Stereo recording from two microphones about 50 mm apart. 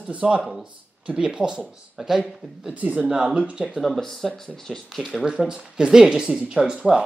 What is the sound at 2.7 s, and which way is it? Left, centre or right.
Speech, right.